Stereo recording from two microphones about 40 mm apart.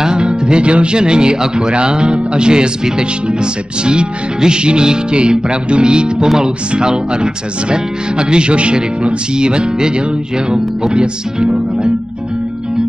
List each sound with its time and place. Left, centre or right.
0.0 s speech: right